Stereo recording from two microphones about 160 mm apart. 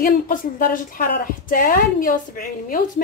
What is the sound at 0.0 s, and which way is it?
A woman's voice, 55° left (ahead or behind).